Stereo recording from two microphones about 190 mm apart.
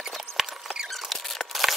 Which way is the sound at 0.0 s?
Centre (ahead or behind).